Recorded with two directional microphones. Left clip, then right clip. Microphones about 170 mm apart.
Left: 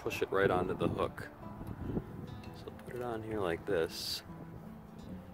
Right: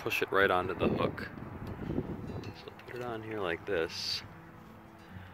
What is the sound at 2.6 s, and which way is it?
Speech, 30° left (ahead or behind).